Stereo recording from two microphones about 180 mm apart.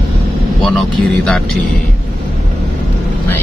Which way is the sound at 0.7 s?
5° left (ahead or behind).